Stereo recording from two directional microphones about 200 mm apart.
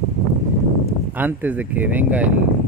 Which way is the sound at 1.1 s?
10° right (ahead or behind).